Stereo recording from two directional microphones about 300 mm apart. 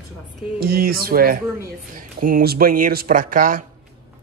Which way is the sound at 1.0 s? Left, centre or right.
Right.